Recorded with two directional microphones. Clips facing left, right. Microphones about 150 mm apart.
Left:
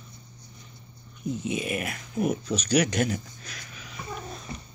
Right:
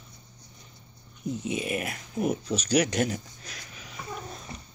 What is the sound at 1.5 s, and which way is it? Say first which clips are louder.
Speech: right 1 dB; 30° right (ahead or behind).